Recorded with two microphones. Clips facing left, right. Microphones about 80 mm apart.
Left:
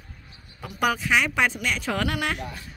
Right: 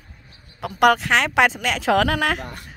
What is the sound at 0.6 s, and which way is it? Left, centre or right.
Speech, right.